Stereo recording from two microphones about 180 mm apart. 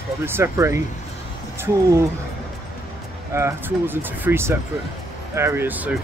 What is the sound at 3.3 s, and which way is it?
Speech, 15° right (ahead or behind).